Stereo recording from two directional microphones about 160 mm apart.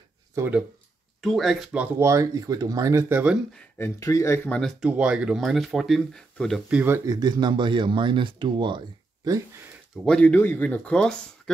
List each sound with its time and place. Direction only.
0.4 s speech: 10° right (ahead or behind)
3.5 s speech: 15° left (ahead or behind)
4.6 s speech: 5° left (ahead or behind)
6.7 s speech: 15° right (ahead or behind)
7.2 s speech: 25° right (ahead or behind)
10.0 s speech: 5° left (ahead or behind)